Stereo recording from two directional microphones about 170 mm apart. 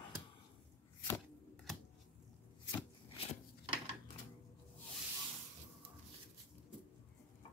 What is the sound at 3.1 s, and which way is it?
Wood, 35° left (ahead or behind).